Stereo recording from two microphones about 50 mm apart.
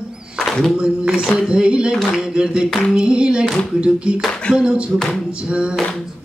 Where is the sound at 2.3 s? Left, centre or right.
Centre.